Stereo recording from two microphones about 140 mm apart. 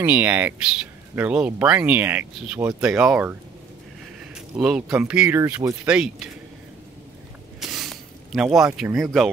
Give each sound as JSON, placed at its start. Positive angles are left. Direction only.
{"t": 0.0, "sound": "speech", "side_deg": -10}
{"t": 4.6, "sound": "speech", "side_deg": -5}
{"t": 5.4, "sound": "speech", "side_deg": -20}
{"t": 5.9, "sound": "speech", "side_deg": -5}
{"t": 7.6, "sound": "squish", "side_deg": 0}
{"t": 8.5, "sound": "speech", "side_deg": 0}